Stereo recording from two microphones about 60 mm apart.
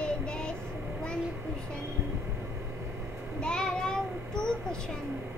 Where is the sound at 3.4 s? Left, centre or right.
Centre.